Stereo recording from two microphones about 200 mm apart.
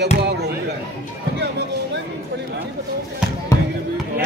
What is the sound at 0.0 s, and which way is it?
Chop, 60° right (ahead or behind).